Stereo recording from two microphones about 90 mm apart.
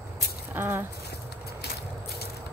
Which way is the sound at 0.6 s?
25° right (ahead or behind).